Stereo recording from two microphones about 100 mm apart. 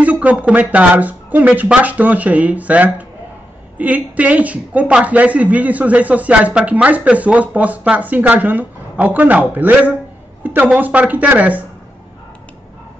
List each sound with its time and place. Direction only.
0.0 s a man's voice: 15° right (ahead or behind)